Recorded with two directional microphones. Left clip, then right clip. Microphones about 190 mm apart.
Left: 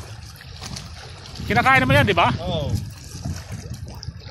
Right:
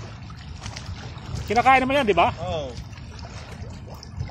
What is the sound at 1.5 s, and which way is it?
Speech, centre (ahead or behind).